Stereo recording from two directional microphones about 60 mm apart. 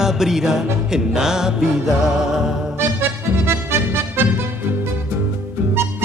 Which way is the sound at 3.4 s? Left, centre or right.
Right.